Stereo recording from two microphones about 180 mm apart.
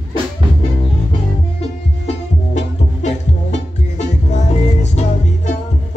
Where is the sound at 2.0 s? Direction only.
40° left (ahead or behind).